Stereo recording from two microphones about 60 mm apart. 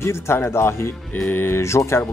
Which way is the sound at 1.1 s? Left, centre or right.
Left.